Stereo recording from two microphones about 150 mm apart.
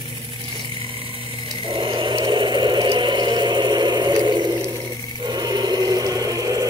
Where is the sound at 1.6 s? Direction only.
30° right (ahead or behind).